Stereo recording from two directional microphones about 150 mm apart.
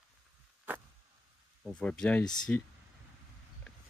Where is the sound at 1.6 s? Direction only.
5° left (ahead or behind).